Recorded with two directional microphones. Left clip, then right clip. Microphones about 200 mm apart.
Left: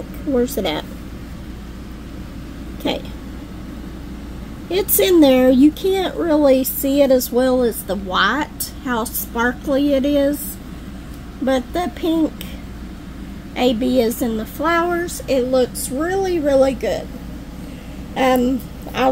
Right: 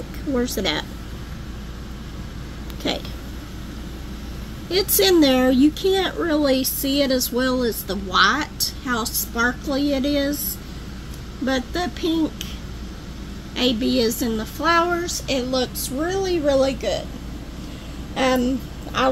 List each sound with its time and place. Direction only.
0.6 s a woman's voice: 10° left (ahead or behind)
4.9 s a woman's voice: 15° left (ahead or behind)
11.4 s a woman's voice: 15° left (ahead or behind)
13.6 s a woman's voice: 15° left (ahead or behind)
18.1 s speech: 25° left (ahead or behind)